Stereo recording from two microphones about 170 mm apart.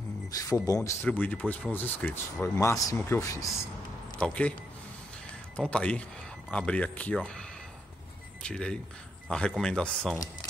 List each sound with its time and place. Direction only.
0.3 s speech: 20° left (ahead or behind)
0.8 s speech: 10° left (ahead or behind)
4.2 s speech: 5° left (ahead or behind)
5.6 s speech: 5° left (ahead or behind)